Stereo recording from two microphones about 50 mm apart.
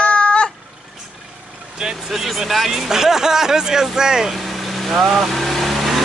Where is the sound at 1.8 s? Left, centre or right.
Centre.